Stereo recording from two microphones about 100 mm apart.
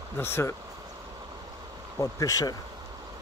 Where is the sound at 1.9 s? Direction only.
30° left (ahead or behind).